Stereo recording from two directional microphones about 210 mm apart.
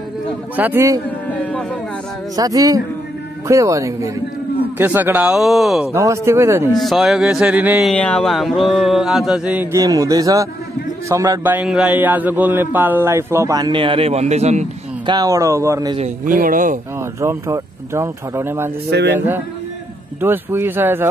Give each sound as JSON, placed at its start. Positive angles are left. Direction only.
{"t": 0.6, "sound": "a man's voice", "side_deg": -10}
{"t": 1.3, "sound": "a sound", "side_deg": 5}
{"t": 2.3, "sound": "a man's voice", "side_deg": -15}
{"t": 4.7, "sound": "mantra", "side_deg": -10}
{"t": 5.9, "sound": "a man's voice", "side_deg": -15}
{"t": 6.8, "sound": "mantra", "side_deg": 0}
{"t": 7.9, "sound": "mantra", "side_deg": 5}
{"t": 11.1, "sound": "a man's voice", "side_deg": -15}
{"t": 15.0, "sound": "a man's voice", "side_deg": -15}
{"t": 16.0, "sound": "speech", "side_deg": -40}
{"t": 17.2, "sound": "a man's voice", "side_deg": -15}
{"t": 18.9, "sound": "speech", "side_deg": -55}
{"t": 19.1, "sound": "a man's voice", "side_deg": -10}